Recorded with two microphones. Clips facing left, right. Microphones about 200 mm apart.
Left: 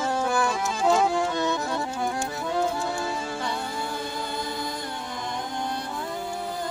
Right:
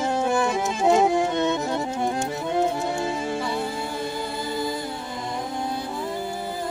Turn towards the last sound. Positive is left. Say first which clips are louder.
# right 2 dB
turn(degrees=-5)  # may be behind; listen again after turning